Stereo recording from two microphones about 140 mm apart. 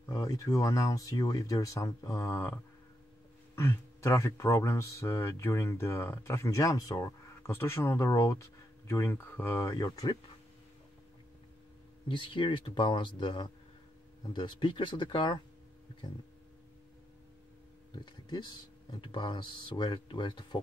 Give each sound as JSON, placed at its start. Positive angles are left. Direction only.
{"t": 0.1, "sound": "speech", "side_deg": 25}
{"t": 12.1, "sound": "speech", "side_deg": 35}
{"t": 18.3, "sound": "speech", "side_deg": 35}